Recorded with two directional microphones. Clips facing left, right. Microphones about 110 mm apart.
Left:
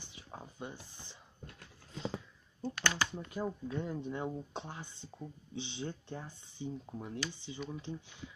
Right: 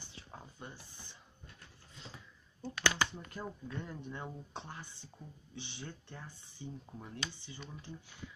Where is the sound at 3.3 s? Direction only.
15° left (ahead or behind).